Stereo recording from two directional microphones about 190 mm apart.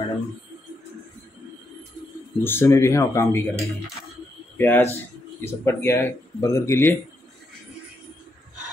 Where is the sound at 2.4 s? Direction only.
15° left (ahead or behind).